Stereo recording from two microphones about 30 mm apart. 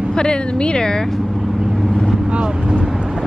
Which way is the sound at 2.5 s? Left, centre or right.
Right.